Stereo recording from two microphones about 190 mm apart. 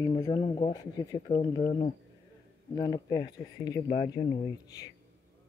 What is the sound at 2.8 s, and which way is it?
Speech, 20° left (ahead or behind).